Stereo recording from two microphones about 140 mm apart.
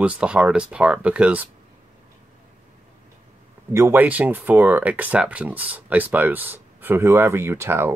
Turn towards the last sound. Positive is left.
turn(degrees=-15)  # may be behind; listen again after turning